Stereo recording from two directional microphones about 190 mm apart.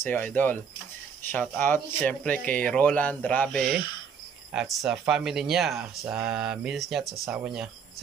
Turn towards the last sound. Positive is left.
turn(degrees=-5)  # may be behind; listen again after turning